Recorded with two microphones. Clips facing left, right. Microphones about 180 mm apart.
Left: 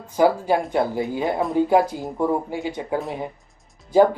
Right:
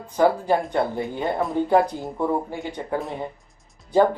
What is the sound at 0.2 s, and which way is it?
Speech, 10° left (ahead or behind).